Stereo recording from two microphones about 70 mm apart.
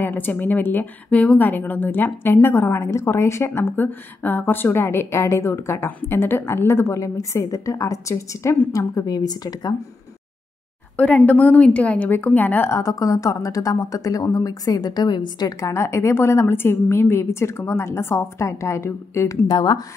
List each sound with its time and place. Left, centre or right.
0.0 s a woman's voice: left
1.1 s a woman's voice: centre; by 8.5 s left
8.7 s a woman's voice: left
11.0 s a woman's voice: centre
12.6 s a woman's voice: left
15.6 s a woman's voice: left
19.4 s speech: left